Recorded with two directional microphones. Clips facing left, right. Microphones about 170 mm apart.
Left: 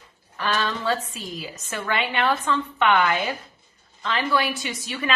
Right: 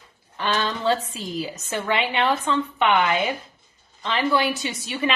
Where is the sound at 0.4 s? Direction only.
25° right (ahead or behind).